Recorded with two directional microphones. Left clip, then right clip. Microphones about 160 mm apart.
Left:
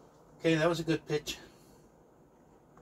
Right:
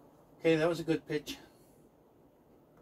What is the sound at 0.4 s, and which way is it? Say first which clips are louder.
Speech: even; 30° right (ahead or behind).